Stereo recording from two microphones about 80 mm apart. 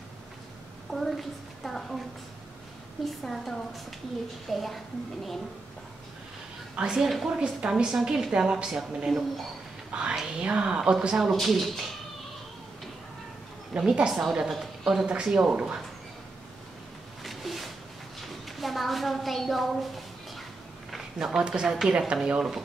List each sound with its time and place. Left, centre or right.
0.9 s a woman's voice: centre
3.1 s a woman's voice: centre
6.8 s a woman's voice: centre
13.7 s a woman's voice: centre
17.2 s a sound: centre
20.9 s a woman's voice: centre